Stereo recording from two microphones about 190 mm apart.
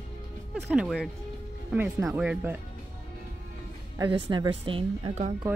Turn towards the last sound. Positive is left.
turn(degrees=-35)  # may be behind; listen again after turning